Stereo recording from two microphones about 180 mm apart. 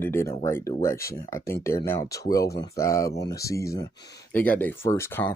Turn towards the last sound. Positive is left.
turn(degrees=15)  # may be behind; listen again after turning